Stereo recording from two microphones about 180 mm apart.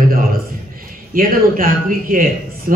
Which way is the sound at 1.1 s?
55° right (ahead or behind).